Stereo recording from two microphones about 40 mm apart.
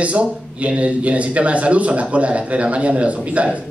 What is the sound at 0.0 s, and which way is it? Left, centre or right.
Speech, right.